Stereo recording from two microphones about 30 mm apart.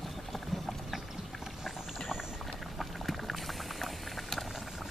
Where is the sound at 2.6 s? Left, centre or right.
Centre.